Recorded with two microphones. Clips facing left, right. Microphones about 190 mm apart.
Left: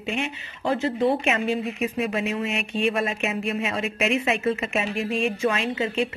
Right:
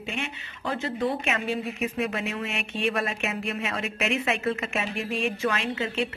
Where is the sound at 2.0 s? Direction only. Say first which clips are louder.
Left 5 dB; centre (ahead or behind).